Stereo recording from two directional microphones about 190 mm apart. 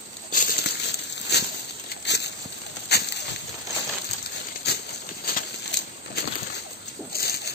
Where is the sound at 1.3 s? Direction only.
60° left (ahead or behind).